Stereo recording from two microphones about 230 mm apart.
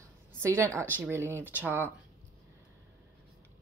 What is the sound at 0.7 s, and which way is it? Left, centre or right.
Speech, centre.